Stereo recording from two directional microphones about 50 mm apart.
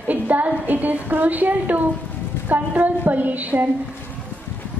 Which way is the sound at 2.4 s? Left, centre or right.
Right.